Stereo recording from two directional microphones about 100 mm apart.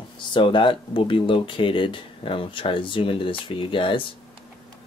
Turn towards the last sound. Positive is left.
turn(degrees=60)  # may be behind; listen again after turning